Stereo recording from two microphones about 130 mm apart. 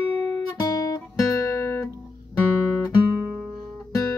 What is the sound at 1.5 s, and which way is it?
Music, 20° left (ahead or behind).